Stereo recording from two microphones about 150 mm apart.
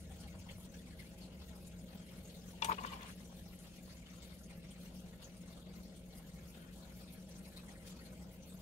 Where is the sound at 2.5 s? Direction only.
50° left (ahead or behind).